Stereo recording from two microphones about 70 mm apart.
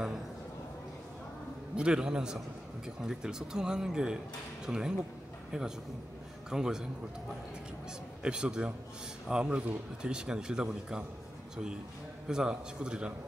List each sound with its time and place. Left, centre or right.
1.8 s speech: centre
6.5 s speech: centre
8.2 s speech: centre
12.3 s speech: centre